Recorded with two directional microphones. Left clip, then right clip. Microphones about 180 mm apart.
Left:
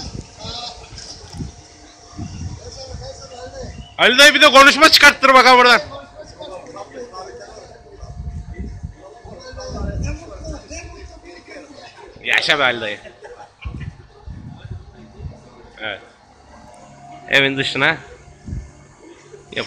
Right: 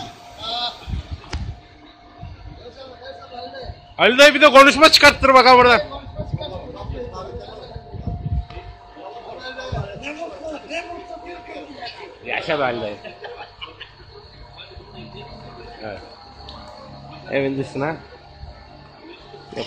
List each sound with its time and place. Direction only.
3.9 s a man's voice: centre (ahead or behind)
9.4 s a sound: 30° right (ahead or behind)
12.3 s a man's voice: 5° left (ahead or behind)
15.8 s cricket: 10° left (ahead or behind)
17.3 s speech: 5° left (ahead or behind)